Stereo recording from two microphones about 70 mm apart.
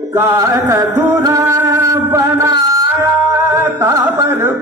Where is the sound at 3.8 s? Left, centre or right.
Right.